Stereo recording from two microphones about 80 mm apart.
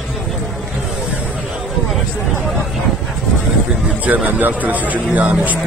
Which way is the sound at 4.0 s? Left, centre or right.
Centre.